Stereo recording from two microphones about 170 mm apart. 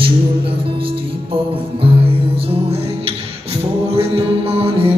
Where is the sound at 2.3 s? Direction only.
35° right (ahead or behind).